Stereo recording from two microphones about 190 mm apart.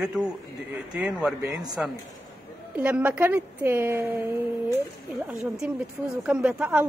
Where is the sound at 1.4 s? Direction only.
20° right (ahead or behind).